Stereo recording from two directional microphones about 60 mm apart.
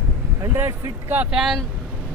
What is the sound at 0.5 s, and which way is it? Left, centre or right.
Speech, right.